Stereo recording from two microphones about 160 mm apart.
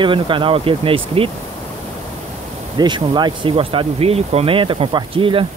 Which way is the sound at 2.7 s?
25° right (ahead or behind).